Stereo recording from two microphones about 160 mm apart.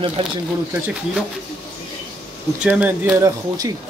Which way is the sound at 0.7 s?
10° right (ahead or behind).